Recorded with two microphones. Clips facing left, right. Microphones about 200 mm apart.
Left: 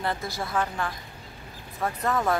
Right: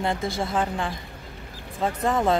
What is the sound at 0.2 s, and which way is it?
A woman's voice, 25° right (ahead or behind).